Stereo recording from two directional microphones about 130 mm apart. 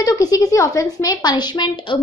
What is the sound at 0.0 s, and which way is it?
Speech, 30° left (ahead or behind).